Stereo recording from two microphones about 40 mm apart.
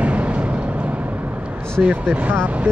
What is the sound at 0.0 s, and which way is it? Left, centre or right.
Vehicle, right.